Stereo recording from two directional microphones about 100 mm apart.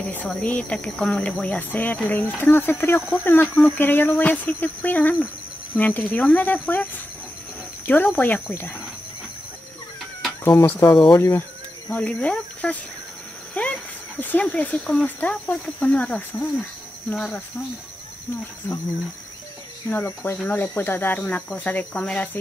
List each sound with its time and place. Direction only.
0.0 s speech: 15° left (ahead or behind)
10.9 s speech: 50° left (ahead or behind)
11.1 s speech: 25° left (ahead or behind)
11.9 s speech: 15° left (ahead or behind)
19.9 s speech: 20° left (ahead or behind)